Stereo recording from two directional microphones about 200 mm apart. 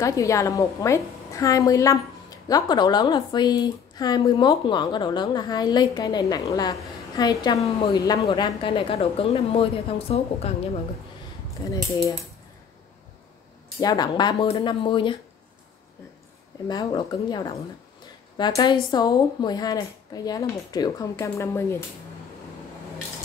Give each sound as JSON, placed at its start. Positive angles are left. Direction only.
{"t": 0.0, "sound": "a woman's voice", "side_deg": 15}
{"t": 11.7, "sound": "a woman's voice", "side_deg": 20}
{"t": 13.7, "sound": "a woman's voice", "side_deg": 20}
{"t": 16.6, "sound": "a woman's voice", "side_deg": 20}